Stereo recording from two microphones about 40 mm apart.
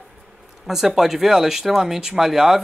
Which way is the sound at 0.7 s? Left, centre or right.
Centre.